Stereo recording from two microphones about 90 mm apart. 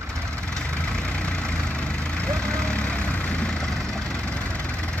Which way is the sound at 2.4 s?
10° left (ahead or behind).